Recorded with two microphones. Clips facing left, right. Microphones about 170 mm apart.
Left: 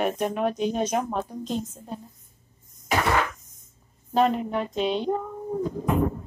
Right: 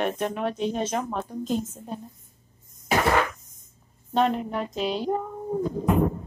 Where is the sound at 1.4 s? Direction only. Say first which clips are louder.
Right 2 dB; 5° right (ahead or behind).